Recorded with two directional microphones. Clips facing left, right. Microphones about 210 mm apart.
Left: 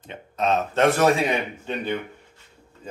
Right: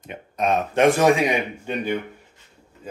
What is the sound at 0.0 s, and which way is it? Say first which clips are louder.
A man's voice: right 1 dB; 15° right (ahead or behind).